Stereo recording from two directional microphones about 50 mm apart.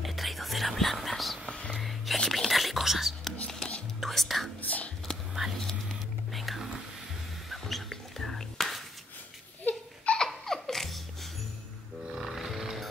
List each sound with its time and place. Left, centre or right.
0.0 s whispering: centre
1.7 s music: centre
2.1 s a sound: centre
2.4 s whispering: centre
3.4 s whispering: centre
4.0 s whispering: centre
4.6 s whispering: left
5.6 s whispering: centre
10.1 s baby laughter: centre
12.2 s a sound: centre